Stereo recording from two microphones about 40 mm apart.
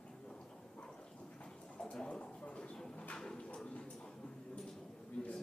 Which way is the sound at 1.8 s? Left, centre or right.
Left.